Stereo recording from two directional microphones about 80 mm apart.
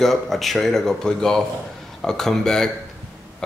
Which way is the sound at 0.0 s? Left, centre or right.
Centre.